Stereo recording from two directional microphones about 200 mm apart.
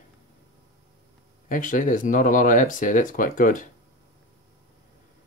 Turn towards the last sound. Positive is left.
turn(degrees=40)  # may be behind; listen again after turning